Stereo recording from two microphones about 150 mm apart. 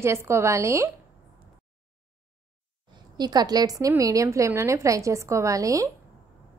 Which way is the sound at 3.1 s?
30° right (ahead or behind).